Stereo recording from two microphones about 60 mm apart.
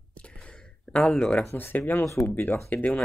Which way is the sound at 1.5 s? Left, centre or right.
Left.